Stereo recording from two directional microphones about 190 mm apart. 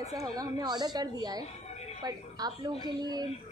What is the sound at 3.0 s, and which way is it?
Speech, 20° right (ahead or behind).